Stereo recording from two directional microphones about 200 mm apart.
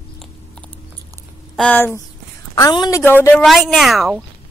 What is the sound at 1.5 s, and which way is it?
A woman's voice, 10° left (ahead or behind).